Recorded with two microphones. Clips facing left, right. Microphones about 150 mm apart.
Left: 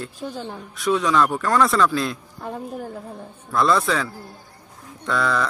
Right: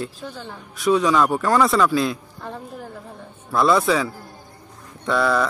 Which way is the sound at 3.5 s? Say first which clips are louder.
Right 2 dB; centre (ahead or behind).